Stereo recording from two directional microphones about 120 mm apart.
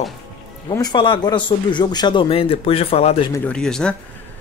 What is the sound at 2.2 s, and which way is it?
Speech, 55° left (ahead or behind).